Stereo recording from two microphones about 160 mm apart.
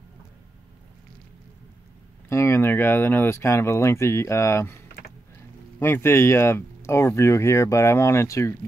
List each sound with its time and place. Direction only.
2.2 s speech: 15° left (ahead or behind)
5.8 s speech: 15° left (ahead or behind)